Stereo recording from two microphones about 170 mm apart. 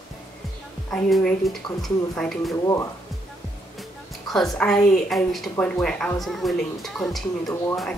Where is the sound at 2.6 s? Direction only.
20° left (ahead or behind).